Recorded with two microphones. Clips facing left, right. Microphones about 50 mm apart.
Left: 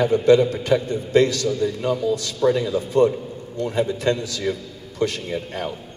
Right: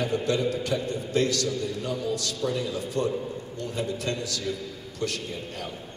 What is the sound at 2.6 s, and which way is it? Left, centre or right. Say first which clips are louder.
A man's voice: left 10 dB; left.